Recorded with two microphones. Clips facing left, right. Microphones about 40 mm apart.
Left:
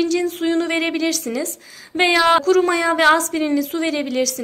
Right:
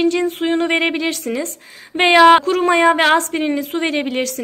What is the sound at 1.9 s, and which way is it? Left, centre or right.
Speech, right.